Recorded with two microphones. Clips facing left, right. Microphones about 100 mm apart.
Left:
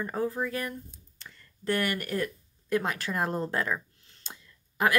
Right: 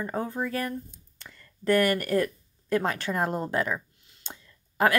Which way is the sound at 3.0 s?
25° right (ahead or behind).